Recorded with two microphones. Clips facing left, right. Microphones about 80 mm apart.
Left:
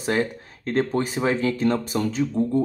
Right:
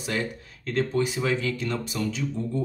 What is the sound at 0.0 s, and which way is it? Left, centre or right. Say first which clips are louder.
Speech: left 6 dB; left.